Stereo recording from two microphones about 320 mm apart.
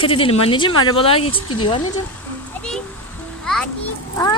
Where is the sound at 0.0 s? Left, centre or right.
Centre.